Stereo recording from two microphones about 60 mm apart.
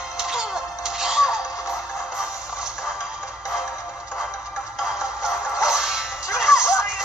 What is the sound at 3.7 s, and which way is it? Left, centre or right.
Music, left.